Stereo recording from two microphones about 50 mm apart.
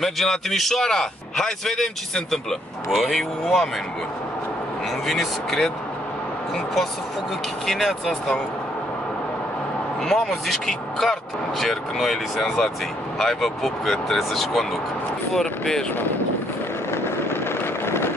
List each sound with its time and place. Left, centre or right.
0.0 s a man's voice: centre
5.0 s speech: centre
7.6 s a man's voice: centre
10.0 s a man's voice: centre
16.9 s vehicle: left
17.8 s a sound: left